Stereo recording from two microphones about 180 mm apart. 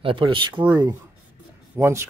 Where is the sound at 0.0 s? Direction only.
30° right (ahead or behind).